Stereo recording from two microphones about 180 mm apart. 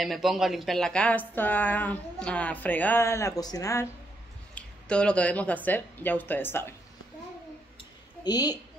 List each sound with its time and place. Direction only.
0.0 s a woman's voice: centre (ahead or behind); by 3.9 s 15° left (ahead or behind)
4.6 s a woman's voice: 5° left (ahead or behind)
8.2 s a woman's voice: 20° left (ahead or behind)